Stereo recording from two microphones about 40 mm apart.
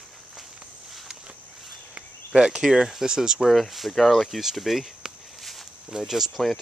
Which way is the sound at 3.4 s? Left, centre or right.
Centre.